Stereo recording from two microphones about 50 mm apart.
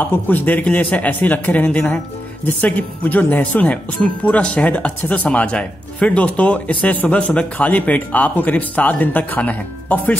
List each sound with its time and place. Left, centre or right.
0.0 s speech: left